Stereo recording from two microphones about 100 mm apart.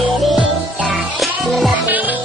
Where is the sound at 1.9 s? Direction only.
15° right (ahead or behind).